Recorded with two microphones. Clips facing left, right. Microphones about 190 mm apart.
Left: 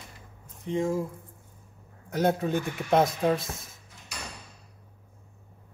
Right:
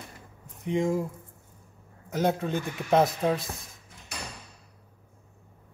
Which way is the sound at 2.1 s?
Centre (ahead or behind).